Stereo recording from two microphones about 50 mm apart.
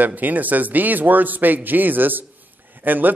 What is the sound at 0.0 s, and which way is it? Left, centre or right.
A man's voice, right.